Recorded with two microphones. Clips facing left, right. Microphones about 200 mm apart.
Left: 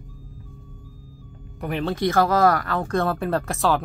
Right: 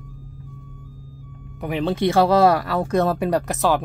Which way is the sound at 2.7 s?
10° right (ahead or behind).